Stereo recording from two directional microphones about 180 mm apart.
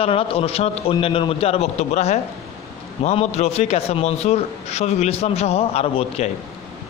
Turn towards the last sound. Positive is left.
turn(degrees=35)  # may be behind; listen again after turning